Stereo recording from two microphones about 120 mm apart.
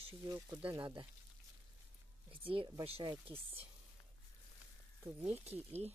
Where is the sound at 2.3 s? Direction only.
45° right (ahead or behind).